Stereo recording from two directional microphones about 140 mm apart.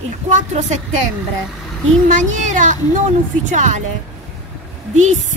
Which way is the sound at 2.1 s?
60° right (ahead or behind).